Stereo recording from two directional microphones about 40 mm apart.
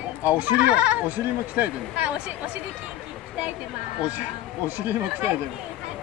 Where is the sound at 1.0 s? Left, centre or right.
Right.